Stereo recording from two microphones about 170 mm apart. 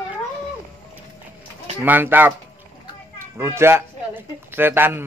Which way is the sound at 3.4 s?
15° right (ahead or behind).